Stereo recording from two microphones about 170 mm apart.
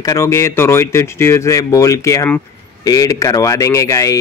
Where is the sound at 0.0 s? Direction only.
20° left (ahead or behind).